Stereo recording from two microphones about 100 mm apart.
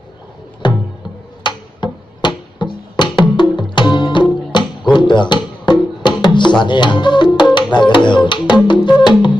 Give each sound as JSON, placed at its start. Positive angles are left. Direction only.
{"t": 0.6, "sound": "music", "side_deg": 50}
{"t": 6.6, "sound": "speech", "side_deg": 50}
{"t": 8.6, "sound": "music", "side_deg": 50}